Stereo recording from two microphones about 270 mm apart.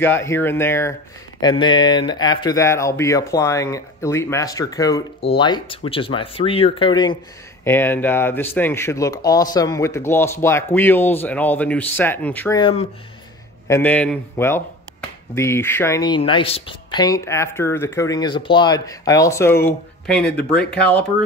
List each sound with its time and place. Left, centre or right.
0.0 s speech: centre